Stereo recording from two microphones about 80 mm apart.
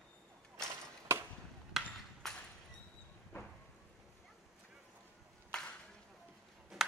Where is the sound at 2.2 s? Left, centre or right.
Centre.